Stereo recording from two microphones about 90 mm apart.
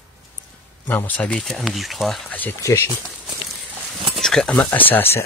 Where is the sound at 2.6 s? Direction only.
35° left (ahead or behind).